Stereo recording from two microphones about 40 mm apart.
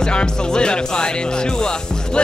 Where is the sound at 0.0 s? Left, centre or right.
Left.